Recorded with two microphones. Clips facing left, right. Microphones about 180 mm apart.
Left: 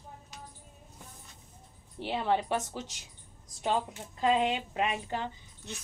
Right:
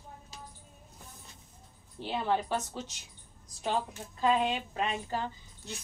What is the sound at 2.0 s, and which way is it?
Speech, 75° left (ahead or behind).